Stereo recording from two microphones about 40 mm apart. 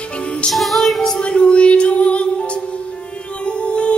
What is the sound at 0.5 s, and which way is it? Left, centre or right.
Music, centre.